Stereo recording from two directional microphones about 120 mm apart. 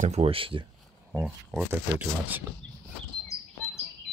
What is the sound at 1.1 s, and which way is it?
Speech, 10° right (ahead or behind).